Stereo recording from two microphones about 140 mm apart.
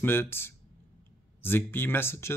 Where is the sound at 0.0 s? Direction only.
15° left (ahead or behind).